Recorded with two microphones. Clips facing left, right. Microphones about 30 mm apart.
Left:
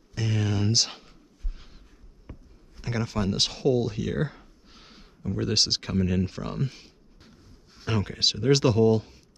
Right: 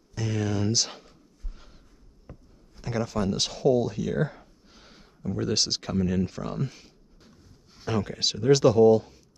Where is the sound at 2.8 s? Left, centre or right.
Left.